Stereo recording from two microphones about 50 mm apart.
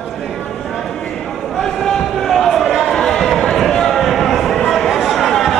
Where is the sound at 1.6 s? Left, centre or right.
Centre.